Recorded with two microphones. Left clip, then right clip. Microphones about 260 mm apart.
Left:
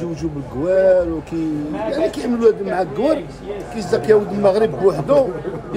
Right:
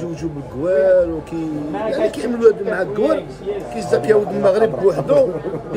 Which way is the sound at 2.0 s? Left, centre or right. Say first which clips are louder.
Right 2 dB; centre.